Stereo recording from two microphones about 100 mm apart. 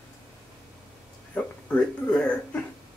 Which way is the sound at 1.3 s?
15° left (ahead or behind).